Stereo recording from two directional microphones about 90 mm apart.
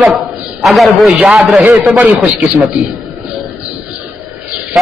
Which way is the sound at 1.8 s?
15° right (ahead or behind).